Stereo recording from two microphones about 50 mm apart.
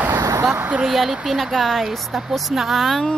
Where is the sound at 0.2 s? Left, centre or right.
Right.